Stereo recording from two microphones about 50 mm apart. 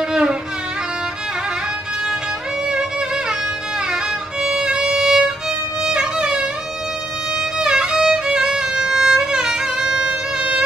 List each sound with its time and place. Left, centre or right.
0.1 s music: centre
3.9 s violin: centre
5.9 s music: centre
7.5 s violin: centre